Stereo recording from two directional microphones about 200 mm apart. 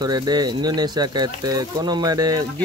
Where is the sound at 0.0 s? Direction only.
20° right (ahead or behind).